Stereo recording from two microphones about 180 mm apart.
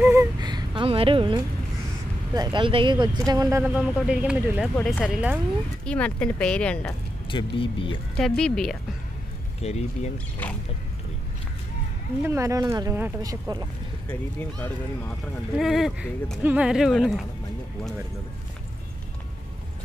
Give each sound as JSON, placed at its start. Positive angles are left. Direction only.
{"t": 0.0, "sound": "a sound", "side_deg": -15}
{"t": 2.3, "sound": "speech", "side_deg": -25}
{"t": 4.7, "sound": "speech", "side_deg": 10}
{"t": 5.0, "sound": "speech", "side_deg": -5}
{"t": 5.9, "sound": "speech", "side_deg": 5}
{"t": 7.2, "sound": "speech", "side_deg": 30}
{"t": 8.4, "sound": "speech", "side_deg": 5}
{"t": 9.6, "sound": "speech", "side_deg": 35}
{"t": 10.4, "sound": "speech", "side_deg": 10}
{"t": 12.2, "sound": "speech", "side_deg": -15}
{"t": 15.5, "sound": "speech", "side_deg": 0}